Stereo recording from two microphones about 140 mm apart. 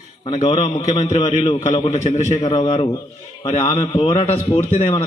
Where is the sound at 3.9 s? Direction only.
35° left (ahead or behind).